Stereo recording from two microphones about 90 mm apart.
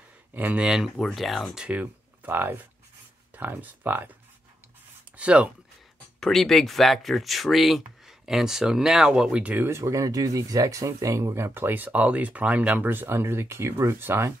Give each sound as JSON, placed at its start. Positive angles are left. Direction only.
{"t": 0.3, "sound": "speech", "side_deg": -20}
{"t": 0.7, "sound": "speech", "side_deg": -5}
{"t": 1.7, "sound": "speech", "side_deg": -20}
{"t": 6.1, "sound": "speech", "side_deg": 5}
{"t": 9.7, "sound": "speech", "side_deg": -30}